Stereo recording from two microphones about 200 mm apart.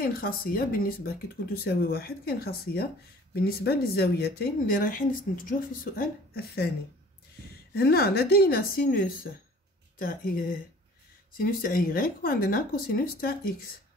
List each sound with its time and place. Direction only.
0.0 s speech: 45° left (ahead or behind)
7.7 s speech: 50° left (ahead or behind)